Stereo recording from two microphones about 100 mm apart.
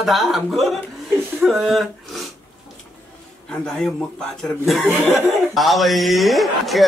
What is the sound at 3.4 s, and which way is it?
Speech, 5° left (ahead or behind).